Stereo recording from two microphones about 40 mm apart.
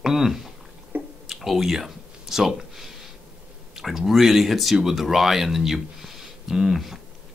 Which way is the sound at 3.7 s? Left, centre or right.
Centre.